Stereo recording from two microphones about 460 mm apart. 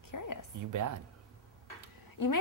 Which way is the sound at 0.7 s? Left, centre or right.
Right.